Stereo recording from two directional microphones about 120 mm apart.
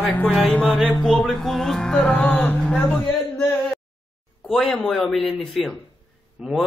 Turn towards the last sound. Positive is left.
turn(degrees=-5)  # may be behind; listen again after turning